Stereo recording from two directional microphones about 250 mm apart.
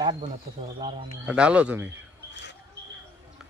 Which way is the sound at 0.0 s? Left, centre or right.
Centre.